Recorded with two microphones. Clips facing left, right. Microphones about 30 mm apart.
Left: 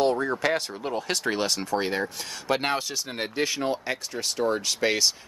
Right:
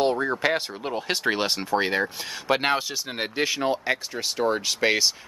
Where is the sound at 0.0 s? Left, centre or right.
Centre.